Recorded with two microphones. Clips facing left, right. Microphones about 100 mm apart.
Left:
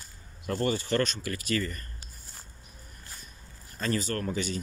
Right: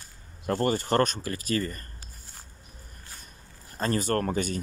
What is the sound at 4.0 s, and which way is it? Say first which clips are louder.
Speech: right 5 dB; 50° right (ahead or behind).